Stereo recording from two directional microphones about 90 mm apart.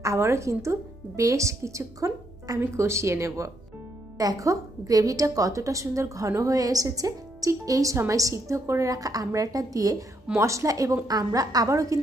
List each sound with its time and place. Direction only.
0.0 s a woman's voice: 35° right (ahead or behind)